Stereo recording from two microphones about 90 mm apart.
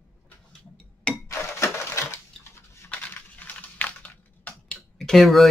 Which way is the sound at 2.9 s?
15° left (ahead or behind).